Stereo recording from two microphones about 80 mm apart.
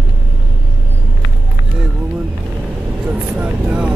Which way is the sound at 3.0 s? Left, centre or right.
Centre.